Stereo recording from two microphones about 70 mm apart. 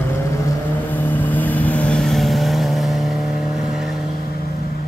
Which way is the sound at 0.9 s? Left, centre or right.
Left.